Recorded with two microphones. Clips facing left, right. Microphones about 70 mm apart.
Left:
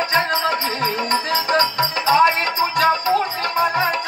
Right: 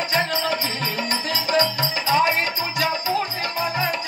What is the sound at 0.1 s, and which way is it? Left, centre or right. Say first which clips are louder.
Music: left 3 dB; left.